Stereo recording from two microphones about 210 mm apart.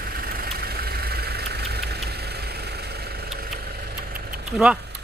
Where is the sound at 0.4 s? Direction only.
45° right (ahead or behind).